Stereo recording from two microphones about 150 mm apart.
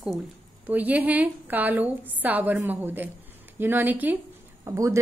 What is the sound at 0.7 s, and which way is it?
A woman's voice, 10° right (ahead or behind).